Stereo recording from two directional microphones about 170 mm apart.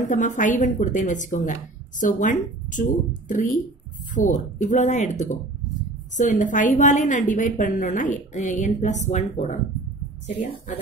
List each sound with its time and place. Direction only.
0.0 s speech: 45° left (ahead or behind)